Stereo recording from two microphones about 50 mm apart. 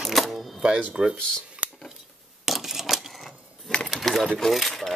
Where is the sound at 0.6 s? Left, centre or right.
Centre.